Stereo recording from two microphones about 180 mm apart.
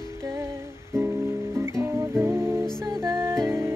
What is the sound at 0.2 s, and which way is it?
Music, 20° right (ahead or behind).